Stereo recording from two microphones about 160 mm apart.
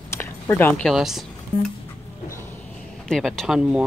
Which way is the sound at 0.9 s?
Centre (ahead or behind).